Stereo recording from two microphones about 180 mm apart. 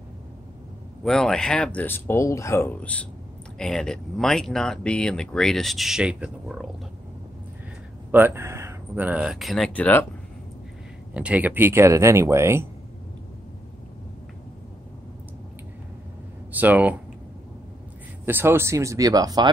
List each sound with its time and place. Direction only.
1.0 s speech: 5° left (ahead or behind)
8.1 s speech: 10° right (ahead or behind); by 10.0 s 10° left (ahead or behind)
11.1 s speech: 10° right (ahead or behind)
16.5 s speech: 10° right (ahead or behind)
18.2 s speech: 10° right (ahead or behind)